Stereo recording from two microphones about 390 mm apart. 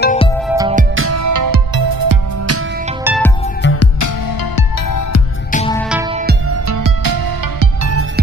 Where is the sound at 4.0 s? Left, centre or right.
Left.